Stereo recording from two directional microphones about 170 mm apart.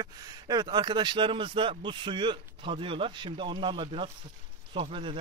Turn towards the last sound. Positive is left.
turn(degrees=-30)  # may be behind; listen again after turning